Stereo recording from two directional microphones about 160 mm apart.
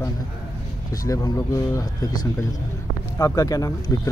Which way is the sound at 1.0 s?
20° left (ahead or behind).